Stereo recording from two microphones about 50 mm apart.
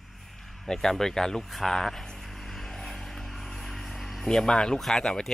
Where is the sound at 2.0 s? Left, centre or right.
Centre.